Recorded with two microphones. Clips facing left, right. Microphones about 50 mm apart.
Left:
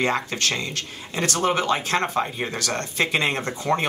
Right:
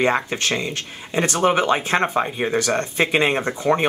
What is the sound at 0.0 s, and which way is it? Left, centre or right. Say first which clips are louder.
Speech: right 3 dB; right.